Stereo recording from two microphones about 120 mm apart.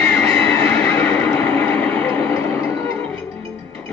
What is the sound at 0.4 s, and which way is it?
Neigh, 15° left (ahead or behind).